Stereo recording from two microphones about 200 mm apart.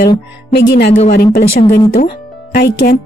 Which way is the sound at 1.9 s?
45° left (ahead or behind).